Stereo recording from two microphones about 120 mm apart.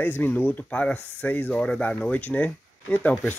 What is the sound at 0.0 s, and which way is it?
Speech, 15° left (ahead or behind).